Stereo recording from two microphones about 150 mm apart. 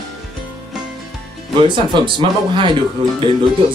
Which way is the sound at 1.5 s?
35° right (ahead or behind).